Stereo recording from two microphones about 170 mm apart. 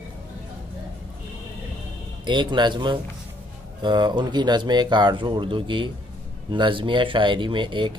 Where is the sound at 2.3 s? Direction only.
25° right (ahead or behind).